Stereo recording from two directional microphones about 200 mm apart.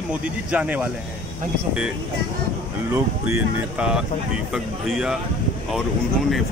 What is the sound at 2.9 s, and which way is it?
Speech, 5° right (ahead or behind).